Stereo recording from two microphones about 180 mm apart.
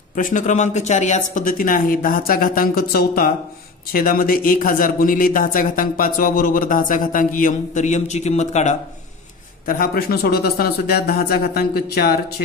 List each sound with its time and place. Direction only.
0.1 s a man's voice: 45° left (ahead or behind)
9.7 s a man's voice: 55° left (ahead or behind)